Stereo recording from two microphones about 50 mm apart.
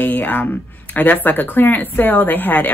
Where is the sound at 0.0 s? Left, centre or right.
Left.